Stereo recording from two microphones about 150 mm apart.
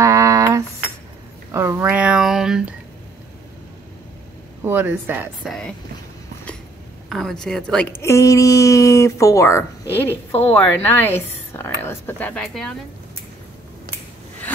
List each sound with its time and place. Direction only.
0.0 s dishes: 20° right (ahead or behind)
1.5 s a sound: 15° right (ahead or behind)
4.6 s speech: 15° right (ahead or behind)
5.4 s speech: centre (ahead or behind)
7.1 s speech: centre (ahead or behind)
8.0 s a woman's voice: 20° left (ahead or behind)